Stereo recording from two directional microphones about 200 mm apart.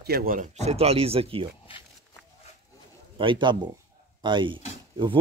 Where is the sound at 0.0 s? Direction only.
50° right (ahead or behind); by 1.5 s 30° right (ahead or behind).